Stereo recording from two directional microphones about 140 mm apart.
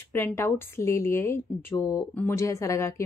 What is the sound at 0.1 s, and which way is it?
Speech, 15° left (ahead or behind).